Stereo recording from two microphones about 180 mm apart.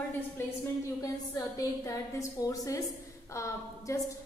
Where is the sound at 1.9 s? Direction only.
20° left (ahead or behind).